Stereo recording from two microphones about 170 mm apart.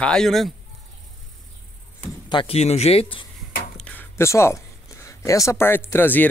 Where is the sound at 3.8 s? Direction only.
10° left (ahead or behind).